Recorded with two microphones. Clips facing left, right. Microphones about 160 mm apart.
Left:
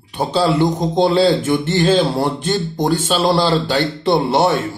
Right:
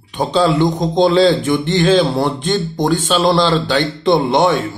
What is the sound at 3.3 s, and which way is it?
Speech, 10° left (ahead or behind).